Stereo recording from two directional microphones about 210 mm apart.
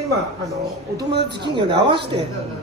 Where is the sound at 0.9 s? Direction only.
20° right (ahead or behind).